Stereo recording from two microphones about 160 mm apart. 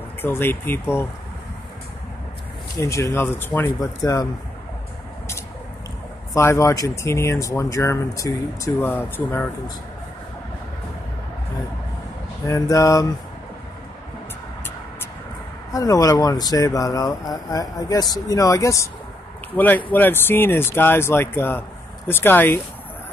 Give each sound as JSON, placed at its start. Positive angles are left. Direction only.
{"t": 0.2, "sound": "speech", "side_deg": 15}
{"t": 2.8, "sound": "speech", "side_deg": 20}
{"t": 4.0, "sound": "speech", "side_deg": 25}
{"t": 6.3, "sound": "speech", "side_deg": 15}
{"t": 12.4, "sound": "speech", "side_deg": 20}
{"t": 15.7, "sound": "speech", "side_deg": 20}